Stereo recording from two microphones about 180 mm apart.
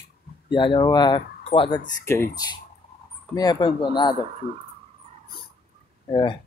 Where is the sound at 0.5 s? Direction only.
25° left (ahead or behind).